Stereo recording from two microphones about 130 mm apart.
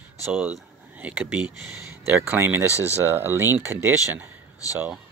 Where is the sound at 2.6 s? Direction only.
25° left (ahead or behind).